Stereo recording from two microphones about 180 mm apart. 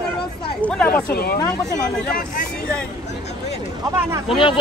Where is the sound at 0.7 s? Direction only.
5° left (ahead or behind).